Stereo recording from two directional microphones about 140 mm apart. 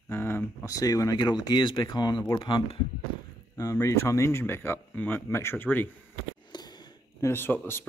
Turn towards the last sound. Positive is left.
turn(degrees=15)  # may be behind; listen again after turning